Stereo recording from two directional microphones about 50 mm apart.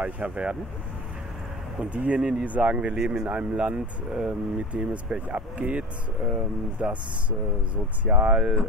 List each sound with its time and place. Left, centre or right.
0.0 s speech: right
1.8 s speech: right
2.1 s speech: centre
2.4 s speech: right